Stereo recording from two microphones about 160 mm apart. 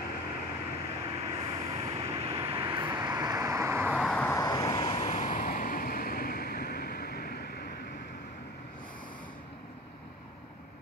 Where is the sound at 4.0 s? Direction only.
5° left (ahead or behind).